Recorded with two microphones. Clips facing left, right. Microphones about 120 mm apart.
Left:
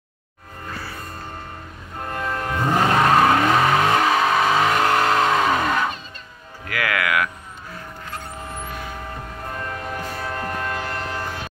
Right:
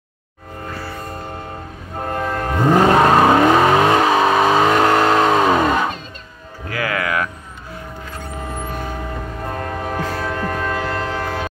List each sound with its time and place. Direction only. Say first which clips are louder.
2.0 s train: right 5 dB; 40° right (ahead or behind)
2.9 s vehicle: right 1 dB; 35° right (ahead or behind)
3.7 s vehicle: right 4 dB; 30° right (ahead or behind)
4.6 s vehicle: right 5 dB; 40° right (ahead or behind)
6.7 s music: right 1 dB; 30° right (ahead or behind)
8.6 s a sound: right 5 dB; 45° right (ahead or behind)
9.4 s train horn: right 5 dB; 55° right (ahead or behind)
9.8 s train: right 6 dB; 90° right